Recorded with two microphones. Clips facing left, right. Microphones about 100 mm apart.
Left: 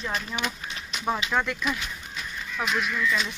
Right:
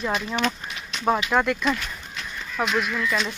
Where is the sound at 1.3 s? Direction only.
30° right (ahead or behind).